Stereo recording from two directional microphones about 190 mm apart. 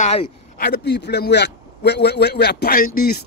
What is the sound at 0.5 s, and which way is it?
A man's voice, 60° left (ahead or behind).